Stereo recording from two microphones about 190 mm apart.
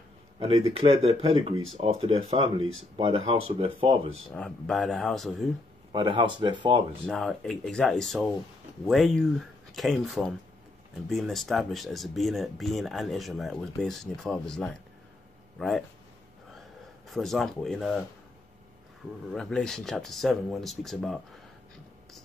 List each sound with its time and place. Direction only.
0.4 s speech: 30° right (ahead or behind)
4.3 s speech: 5° left (ahead or behind)
5.9 s speech: 25° right (ahead or behind)
7.1 s speech: centre (ahead or behind)
17.1 s speech: centre (ahead or behind)
19.3 s speech: 5° left (ahead or behind)